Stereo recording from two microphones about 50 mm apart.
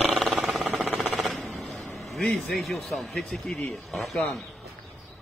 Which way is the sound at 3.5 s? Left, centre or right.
Left.